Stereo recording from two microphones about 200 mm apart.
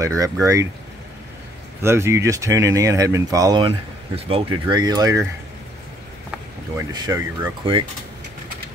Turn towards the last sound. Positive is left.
turn(degrees=-20)  # may be behind; listen again after turning